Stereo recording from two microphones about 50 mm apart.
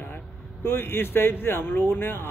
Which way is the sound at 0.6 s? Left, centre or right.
Left.